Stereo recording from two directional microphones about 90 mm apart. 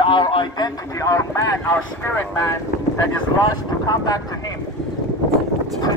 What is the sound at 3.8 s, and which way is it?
Speech, 45° left (ahead or behind).